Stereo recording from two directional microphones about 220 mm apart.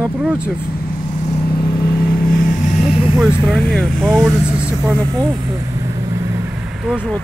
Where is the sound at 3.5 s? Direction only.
Centre (ahead or behind).